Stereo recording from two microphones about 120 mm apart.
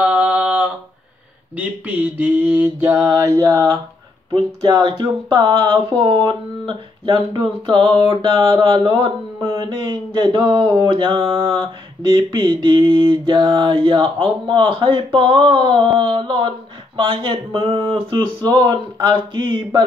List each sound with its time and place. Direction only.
0.0 s a sound: 10° right (ahead or behind)
1.6 s mantra: 15° right (ahead or behind)
4.3 s speech: 40° right (ahead or behind)
12.1 s speech: 35° right (ahead or behind)